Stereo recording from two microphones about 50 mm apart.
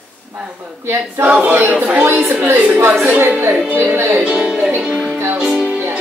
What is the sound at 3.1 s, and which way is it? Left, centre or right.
Speech, right.